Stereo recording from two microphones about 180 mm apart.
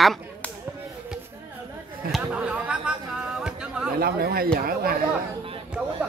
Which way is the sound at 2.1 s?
5° right (ahead or behind).